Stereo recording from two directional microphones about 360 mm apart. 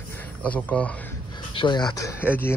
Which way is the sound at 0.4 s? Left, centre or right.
Centre.